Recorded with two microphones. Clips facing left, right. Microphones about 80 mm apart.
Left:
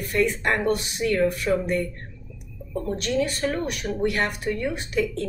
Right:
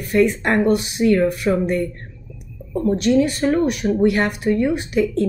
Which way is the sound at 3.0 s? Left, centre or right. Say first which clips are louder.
Right 7 dB; centre.